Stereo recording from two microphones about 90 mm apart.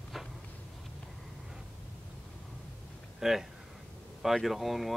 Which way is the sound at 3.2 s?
5° right (ahead or behind).